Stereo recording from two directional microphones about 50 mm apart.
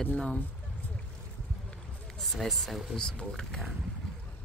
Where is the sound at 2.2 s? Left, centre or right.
Centre.